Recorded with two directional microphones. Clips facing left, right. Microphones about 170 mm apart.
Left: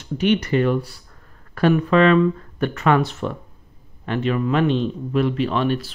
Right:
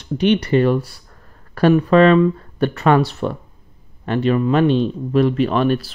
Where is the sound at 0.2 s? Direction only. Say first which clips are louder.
Right 3 dB; 30° right (ahead or behind).